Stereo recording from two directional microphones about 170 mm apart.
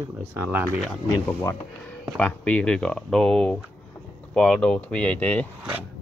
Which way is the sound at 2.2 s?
5° left (ahead or behind).